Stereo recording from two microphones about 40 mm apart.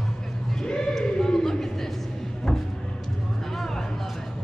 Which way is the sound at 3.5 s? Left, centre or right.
Centre.